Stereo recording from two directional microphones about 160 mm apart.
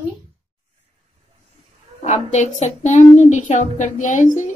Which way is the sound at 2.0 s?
50° left (ahead or behind).